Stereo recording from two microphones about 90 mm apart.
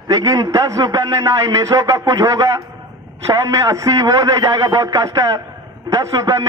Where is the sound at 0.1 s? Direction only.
40° right (ahead or behind).